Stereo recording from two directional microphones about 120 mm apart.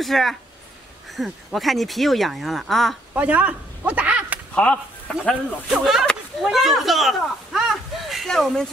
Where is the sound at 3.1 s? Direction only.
10° right (ahead or behind).